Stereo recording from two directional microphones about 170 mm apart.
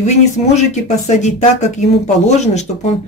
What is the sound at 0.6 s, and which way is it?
Speech, 45° left (ahead or behind).